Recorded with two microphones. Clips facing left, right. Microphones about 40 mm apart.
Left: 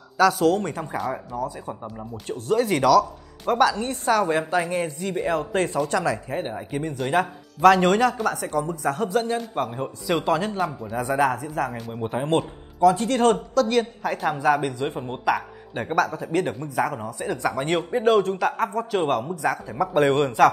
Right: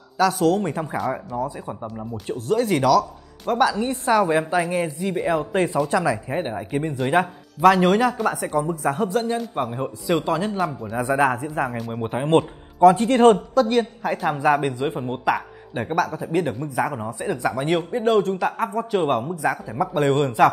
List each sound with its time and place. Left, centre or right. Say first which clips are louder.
0.2 s speech: even; centre
11.0 s speech: right 2 dB; centre
11.6 s a man's voice: right 2 dB; right
13.7 s speech: right 2 dB; centre
14.4 s speech: right 2 dB; centre